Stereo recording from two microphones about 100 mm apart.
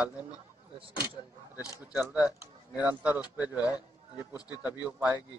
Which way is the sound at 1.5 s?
35° left (ahead or behind).